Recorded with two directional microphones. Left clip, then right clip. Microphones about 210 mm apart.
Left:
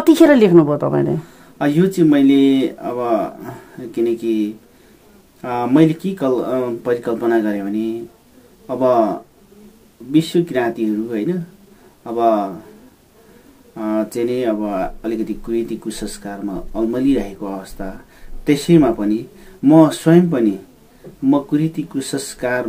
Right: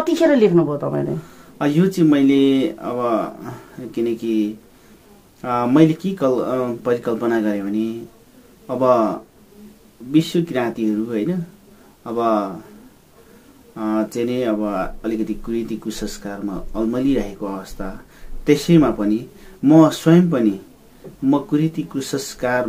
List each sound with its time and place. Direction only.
0.0 s a woman's voice: 50° left (ahead or behind)
1.6 s speech: 5° left (ahead or behind)
10.1 s speech: 5° left (ahead or behind)
13.7 s speech: 5° left (ahead or behind)